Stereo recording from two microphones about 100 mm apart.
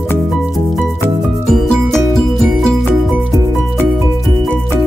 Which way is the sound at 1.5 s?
5° left (ahead or behind).